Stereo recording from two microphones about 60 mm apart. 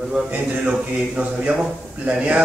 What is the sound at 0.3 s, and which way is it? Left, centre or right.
A man's voice, centre.